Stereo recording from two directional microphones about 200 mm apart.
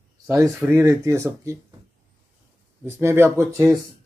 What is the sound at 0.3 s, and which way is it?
Speech, 10° right (ahead or behind).